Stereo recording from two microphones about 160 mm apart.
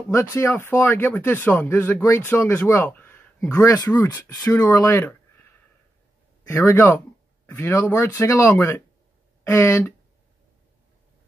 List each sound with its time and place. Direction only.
0.1 s speech: 15° left (ahead or behind)